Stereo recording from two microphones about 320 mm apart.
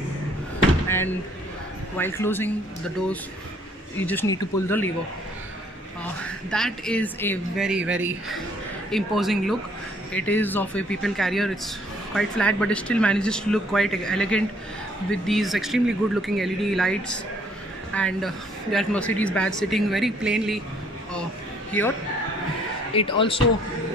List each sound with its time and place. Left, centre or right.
0.8 s speech: centre
4.0 s speech: centre
6.2 s speech: centre
22.9 s speech: centre